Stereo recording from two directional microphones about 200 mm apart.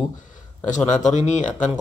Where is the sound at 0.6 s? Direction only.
35° left (ahead or behind).